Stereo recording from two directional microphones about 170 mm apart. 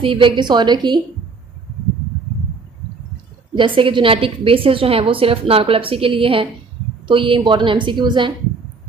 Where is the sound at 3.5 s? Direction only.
30° right (ahead or behind).